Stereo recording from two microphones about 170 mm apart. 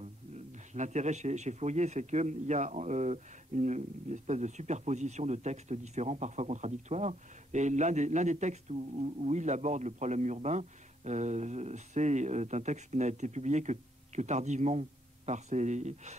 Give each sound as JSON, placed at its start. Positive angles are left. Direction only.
{"t": 0.0, "sound": "speech", "side_deg": -45}